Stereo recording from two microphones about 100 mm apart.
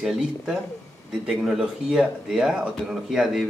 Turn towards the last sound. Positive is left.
turn(degrees=-5)  # may be behind; listen again after turning